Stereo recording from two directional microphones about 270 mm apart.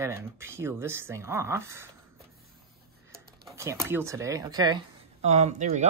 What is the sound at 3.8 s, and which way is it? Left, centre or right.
Speech, centre.